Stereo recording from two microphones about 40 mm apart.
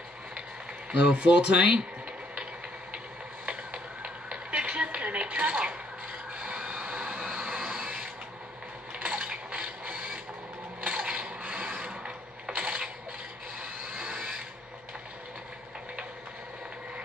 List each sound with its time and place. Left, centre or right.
0.9 s speech: right
3.4 s a sound: right
13.6 s vehicle: centre